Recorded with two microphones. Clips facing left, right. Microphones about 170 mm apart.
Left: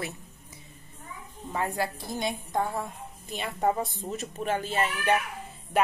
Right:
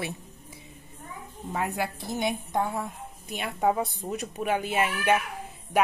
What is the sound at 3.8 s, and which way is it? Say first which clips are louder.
A woman's voice: right 2 dB; 15° right (ahead or behind).